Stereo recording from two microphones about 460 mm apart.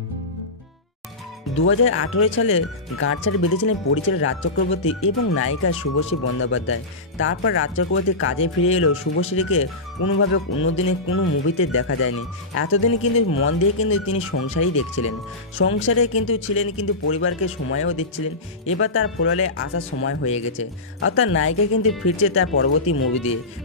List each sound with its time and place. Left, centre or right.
1.6 s speech: left
20.2 s speech: centre
21.0 s speech: left